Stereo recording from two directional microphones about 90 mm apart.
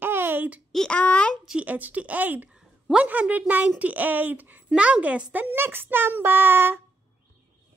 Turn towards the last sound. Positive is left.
turn(degrees=-25)  # may be behind; listen again after turning